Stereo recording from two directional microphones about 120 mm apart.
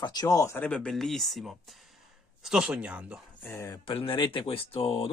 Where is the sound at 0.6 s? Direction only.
5° left (ahead or behind); by 3.2 s 10° right (ahead or behind).